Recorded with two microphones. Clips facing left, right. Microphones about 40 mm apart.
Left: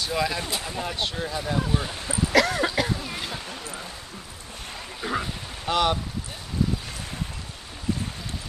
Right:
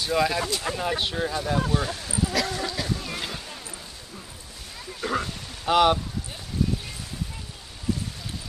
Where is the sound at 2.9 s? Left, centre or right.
Centre.